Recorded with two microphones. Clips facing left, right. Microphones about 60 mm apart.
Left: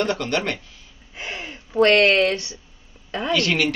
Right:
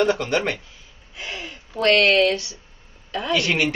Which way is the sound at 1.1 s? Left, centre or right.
Left.